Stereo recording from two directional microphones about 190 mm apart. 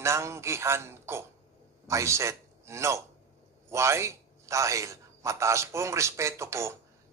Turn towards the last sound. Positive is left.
turn(degrees=-15)  # may be behind; listen again after turning